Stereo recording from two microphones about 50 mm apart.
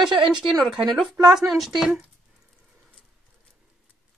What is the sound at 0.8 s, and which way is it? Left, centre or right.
Speech, centre.